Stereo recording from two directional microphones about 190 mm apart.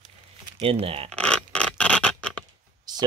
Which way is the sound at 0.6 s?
30° right (ahead or behind).